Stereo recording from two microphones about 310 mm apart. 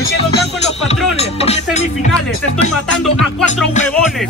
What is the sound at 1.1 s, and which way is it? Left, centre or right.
Music, centre.